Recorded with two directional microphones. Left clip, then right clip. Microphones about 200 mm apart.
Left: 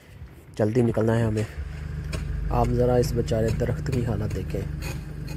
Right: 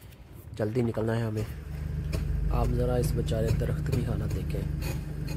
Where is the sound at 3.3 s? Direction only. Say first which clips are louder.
Left 6 dB; 10° left (ahead or behind).